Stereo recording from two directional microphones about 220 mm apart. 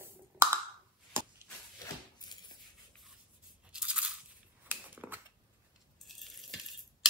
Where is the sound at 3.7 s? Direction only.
5° right (ahead or behind).